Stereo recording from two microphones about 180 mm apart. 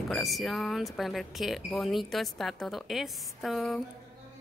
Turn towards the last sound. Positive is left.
turn(degrees=0)  # may be behind; listen again after turning